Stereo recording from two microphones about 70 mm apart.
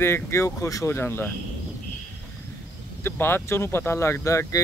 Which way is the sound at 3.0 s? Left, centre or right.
Left.